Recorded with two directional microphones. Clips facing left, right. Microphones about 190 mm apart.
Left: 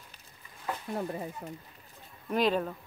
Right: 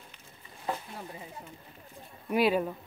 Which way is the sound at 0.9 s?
50° left (ahead or behind).